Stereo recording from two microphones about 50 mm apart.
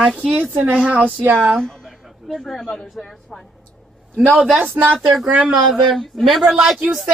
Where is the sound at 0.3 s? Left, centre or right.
Right.